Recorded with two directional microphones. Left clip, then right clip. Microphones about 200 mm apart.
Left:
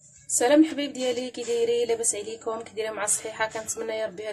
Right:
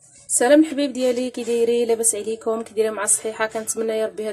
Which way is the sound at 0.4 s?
20° right (ahead or behind).